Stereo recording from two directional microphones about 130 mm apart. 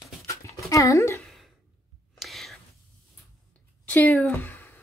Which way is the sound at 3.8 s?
15° left (ahead or behind).